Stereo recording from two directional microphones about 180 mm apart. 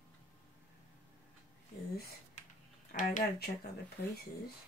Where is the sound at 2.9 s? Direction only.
45° left (ahead or behind).